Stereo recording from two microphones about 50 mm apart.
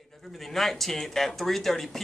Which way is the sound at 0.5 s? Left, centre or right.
Centre.